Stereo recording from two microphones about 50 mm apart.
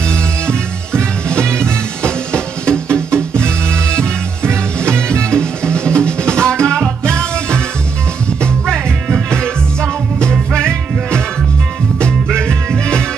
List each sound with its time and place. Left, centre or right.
1.6 s music: centre
3.4 s music: right
3.9 s music: centre
9.3 s music: centre
12.4 s music: centre